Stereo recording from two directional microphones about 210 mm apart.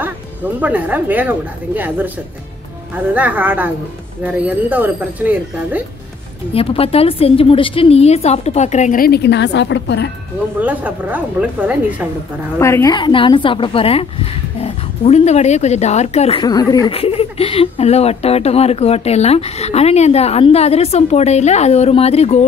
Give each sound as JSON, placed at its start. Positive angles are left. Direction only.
{"t": 0.0, "sound": "speech", "side_deg": -5}
{"t": 3.2, "sound": "speech", "side_deg": -10}
{"t": 6.5, "sound": "a woman's voice", "side_deg": 25}
{"t": 10.6, "sound": "speech", "side_deg": -5}
{"t": 12.5, "sound": "speech", "side_deg": 15}